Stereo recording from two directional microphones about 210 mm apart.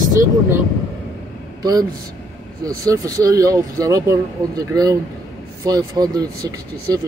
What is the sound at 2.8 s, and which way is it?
Speech, 15° right (ahead or behind).